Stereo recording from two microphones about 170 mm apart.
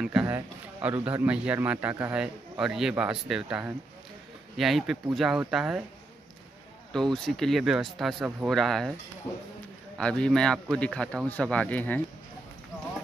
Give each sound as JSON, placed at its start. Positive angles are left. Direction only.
{"t": 0.0, "sound": "a man's voice", "side_deg": -5}
{"t": 6.9, "sound": "speech", "side_deg": 5}
{"t": 9.3, "sound": "speech", "side_deg": 20}
{"t": 9.9, "sound": "speech", "side_deg": 5}